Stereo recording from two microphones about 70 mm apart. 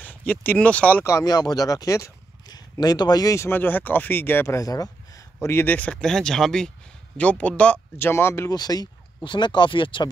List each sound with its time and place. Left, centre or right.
0.0 s a sound: left
0.6 s speech: centre
1.2 s speech: left
2.4 s a sound: left
3.3 s speech: left
4.6 s a sound: left
5.7 s speech: centre
7.2 s speech: left
8.0 s speech: left
8.5 s speech: left
9.5 s speech: left